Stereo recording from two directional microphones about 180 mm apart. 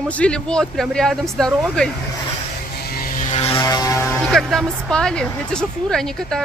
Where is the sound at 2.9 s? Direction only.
55° left (ahead or behind); by 3.6 s 35° left (ahead or behind).